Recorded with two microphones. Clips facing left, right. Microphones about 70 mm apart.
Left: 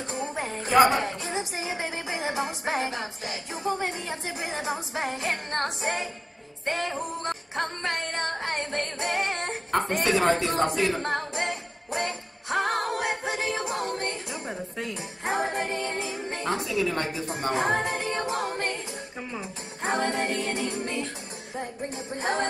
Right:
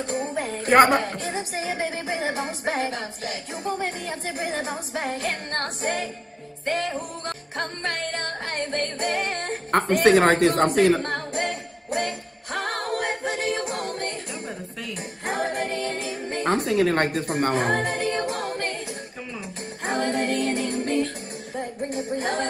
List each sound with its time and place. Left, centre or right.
0.4 s music: left
0.7 s speech: right
1.3 s a woman's voice: left
1.8 s music: left
9.7 s a woman's voice: right
11.0 s music: left
16.4 s a woman's voice: right
17.6 s a capella: left
19.3 s music: left
21.9 s music: left